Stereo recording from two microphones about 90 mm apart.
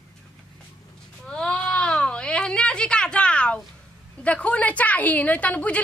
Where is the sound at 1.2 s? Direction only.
10° left (ahead or behind).